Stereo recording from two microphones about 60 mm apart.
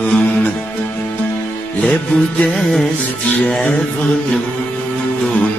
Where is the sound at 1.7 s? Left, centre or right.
Centre.